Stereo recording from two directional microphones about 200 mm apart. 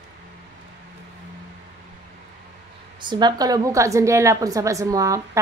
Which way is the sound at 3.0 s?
20° right (ahead or behind).